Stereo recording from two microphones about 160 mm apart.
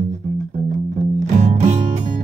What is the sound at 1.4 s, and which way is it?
Music, 45° right (ahead or behind).